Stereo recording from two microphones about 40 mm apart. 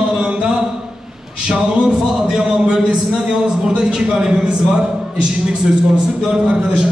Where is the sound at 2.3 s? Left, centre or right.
Centre.